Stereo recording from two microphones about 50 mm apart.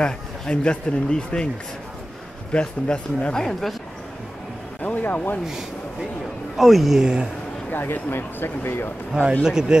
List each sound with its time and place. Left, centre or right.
0.0 s speech: centre
2.5 s speech: left
3.3 s speech: centre
4.8 s a sound: left
5.5 s a sound: centre
6.5 s a man's voice: centre
7.7 s speech: left
9.4 s speech: centre